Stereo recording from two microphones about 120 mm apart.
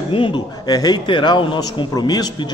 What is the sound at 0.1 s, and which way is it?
A man's voice, 40° left (ahead or behind).